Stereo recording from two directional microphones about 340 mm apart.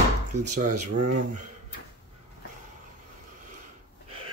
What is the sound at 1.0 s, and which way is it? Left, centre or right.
Speech, right.